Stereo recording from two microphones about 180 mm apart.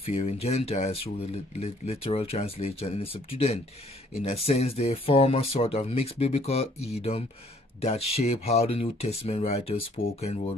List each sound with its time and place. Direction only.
0.1 s speech: 40° left (ahead or behind)